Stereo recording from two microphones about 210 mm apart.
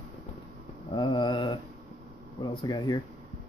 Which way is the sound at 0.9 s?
20° left (ahead or behind).